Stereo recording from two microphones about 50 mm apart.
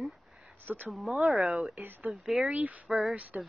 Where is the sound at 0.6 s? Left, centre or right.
Right.